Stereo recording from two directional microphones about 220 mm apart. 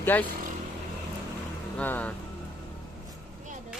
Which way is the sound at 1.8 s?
5° left (ahead or behind).